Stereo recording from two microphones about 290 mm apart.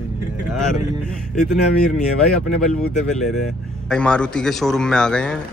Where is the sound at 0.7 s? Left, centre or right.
Centre.